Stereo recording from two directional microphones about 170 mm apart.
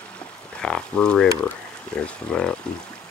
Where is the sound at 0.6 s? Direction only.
5° left (ahead or behind).